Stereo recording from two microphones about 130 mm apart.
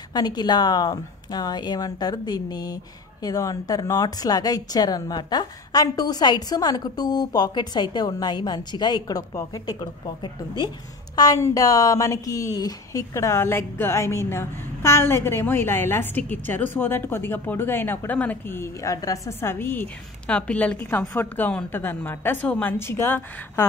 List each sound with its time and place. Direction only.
0.1 s a woman's voice: 30° left (ahead or behind)